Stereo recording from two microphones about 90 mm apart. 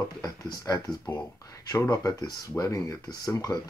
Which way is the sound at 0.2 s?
45° left (ahead or behind).